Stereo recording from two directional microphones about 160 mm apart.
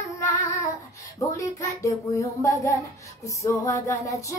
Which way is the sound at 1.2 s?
20° left (ahead or behind).